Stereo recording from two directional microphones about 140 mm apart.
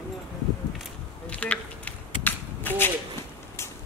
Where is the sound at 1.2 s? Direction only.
10° left (ahead or behind).